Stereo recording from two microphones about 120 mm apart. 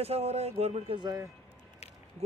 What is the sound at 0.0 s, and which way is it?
Speech, 60° right (ahead or behind).